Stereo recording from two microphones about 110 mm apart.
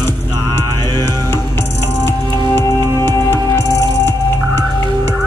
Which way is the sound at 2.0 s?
25° left (ahead or behind).